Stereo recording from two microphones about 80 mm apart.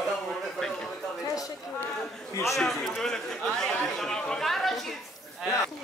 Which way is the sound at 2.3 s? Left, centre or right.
Left.